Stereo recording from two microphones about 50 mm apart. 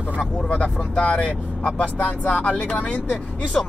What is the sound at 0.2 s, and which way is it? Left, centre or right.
Speech, centre.